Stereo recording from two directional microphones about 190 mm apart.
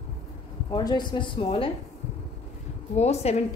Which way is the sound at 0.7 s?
20° left (ahead or behind).